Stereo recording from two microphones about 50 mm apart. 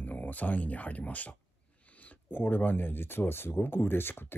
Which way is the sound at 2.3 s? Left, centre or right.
Left.